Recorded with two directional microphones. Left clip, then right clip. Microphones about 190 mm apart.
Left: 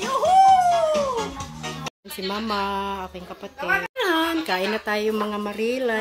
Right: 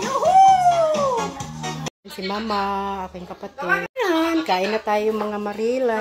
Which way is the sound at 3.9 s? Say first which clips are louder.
Right 2 dB; 10° left (ahead or behind).